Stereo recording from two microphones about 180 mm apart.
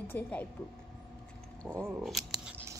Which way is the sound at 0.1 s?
10° left (ahead or behind).